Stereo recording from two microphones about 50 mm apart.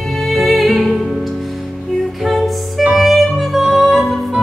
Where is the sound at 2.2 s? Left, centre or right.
Centre.